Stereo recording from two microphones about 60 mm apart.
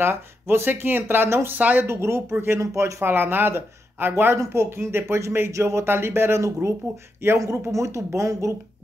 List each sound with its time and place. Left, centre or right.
0.0 s speech: right
1.9 s speech: right
2.6 s speech: right
5.5 s speech: right
5.9 s speech: right